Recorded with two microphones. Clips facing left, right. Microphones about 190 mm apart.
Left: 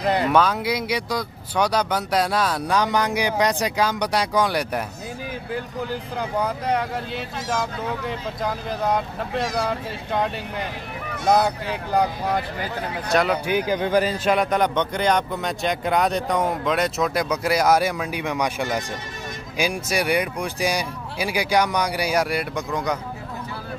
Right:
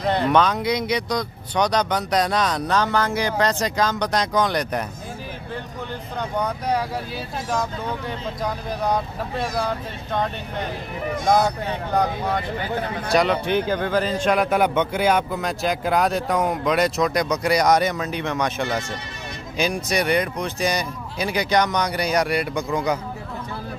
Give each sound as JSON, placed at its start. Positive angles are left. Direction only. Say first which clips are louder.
{"t": 0.0, "sound": "speech", "louder": "even", "side_deg": 5}
{"t": 6.1, "sound": "speech", "louder": "even", "side_deg": 5}
{"t": 8.4, "sound": "speech", "louder": "even", "side_deg": 0}
{"t": 11.7, "sound": "speech", "louder": "left 2 dB", "side_deg": 10}
{"t": 13.1, "sound": "speech", "louder": "right 1 dB", "side_deg": 5}
{"t": 14.2, "sound": "speech", "louder": "right 1 dB", "side_deg": 0}